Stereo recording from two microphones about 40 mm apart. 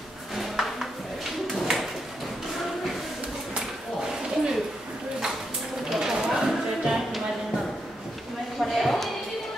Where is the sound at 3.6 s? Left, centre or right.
Centre.